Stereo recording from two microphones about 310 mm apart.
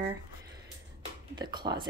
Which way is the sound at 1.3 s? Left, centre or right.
Centre.